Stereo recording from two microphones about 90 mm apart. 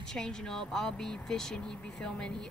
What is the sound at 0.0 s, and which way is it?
Speech, 5° left (ahead or behind).